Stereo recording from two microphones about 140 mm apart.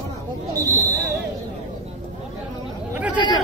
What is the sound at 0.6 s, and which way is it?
Speech, 25° right (ahead or behind).